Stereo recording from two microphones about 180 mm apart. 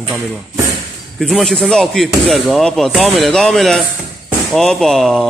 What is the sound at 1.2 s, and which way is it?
Speech, centre (ahead or behind).